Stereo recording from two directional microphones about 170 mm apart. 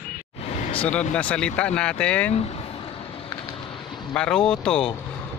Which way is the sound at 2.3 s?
35° left (ahead or behind).